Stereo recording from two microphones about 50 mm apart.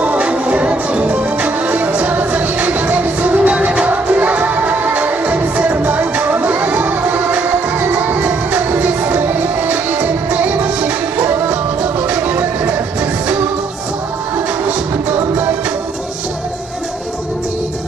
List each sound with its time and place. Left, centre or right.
0.0 s music: right
12.1 s music: right